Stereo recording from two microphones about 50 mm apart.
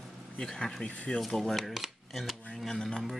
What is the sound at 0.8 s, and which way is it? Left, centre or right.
Speech, left.